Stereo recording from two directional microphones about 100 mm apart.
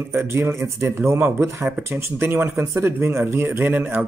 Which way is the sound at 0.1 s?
25° right (ahead or behind).